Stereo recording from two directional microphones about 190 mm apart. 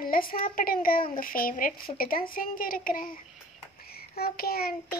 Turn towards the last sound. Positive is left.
turn(degrees=55)  # may be behind; listen again after turning